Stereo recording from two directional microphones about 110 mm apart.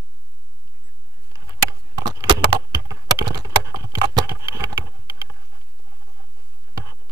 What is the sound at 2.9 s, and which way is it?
Computer keyboard, 30° right (ahead or behind).